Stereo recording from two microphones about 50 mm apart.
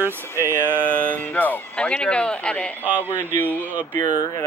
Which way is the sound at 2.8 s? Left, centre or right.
Right.